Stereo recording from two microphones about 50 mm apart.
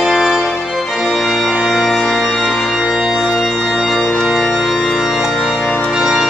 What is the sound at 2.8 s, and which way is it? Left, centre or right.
Music, centre.